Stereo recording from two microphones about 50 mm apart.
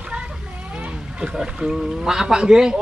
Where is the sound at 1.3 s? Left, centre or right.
Centre.